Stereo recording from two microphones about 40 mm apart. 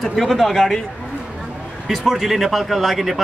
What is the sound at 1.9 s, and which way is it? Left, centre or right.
Speech, centre.